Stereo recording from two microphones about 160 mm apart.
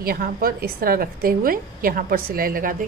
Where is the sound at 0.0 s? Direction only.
70° right (ahead or behind).